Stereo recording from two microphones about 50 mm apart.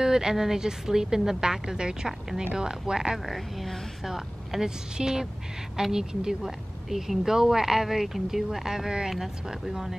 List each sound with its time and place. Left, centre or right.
0.0 s a woman's voice: centre
3.3 s a woman's voice: centre